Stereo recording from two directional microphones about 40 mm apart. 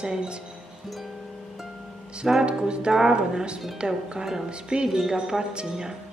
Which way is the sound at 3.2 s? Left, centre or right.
Right.